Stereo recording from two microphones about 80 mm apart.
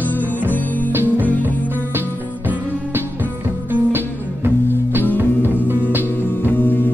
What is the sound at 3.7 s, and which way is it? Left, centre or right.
Music, right.